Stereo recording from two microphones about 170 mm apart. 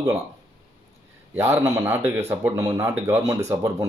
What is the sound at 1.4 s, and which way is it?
Speech, 15° right (ahead or behind).